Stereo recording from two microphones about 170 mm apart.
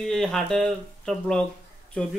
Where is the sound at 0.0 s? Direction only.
Centre (ahead or behind).